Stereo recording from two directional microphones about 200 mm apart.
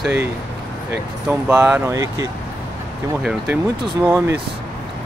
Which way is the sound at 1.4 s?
10° right (ahead or behind).